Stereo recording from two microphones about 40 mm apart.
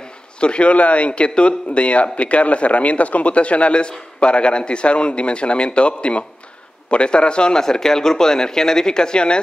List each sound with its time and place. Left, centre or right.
0.4 s a man's voice: left